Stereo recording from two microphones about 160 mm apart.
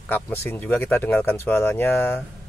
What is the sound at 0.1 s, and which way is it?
Speech, 15° left (ahead or behind).